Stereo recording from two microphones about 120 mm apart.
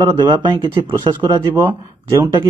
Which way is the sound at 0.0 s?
40° right (ahead or behind).